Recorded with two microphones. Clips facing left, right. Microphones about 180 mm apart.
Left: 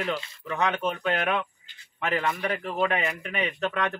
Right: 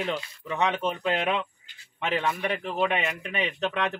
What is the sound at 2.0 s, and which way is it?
Speech, centre (ahead or behind).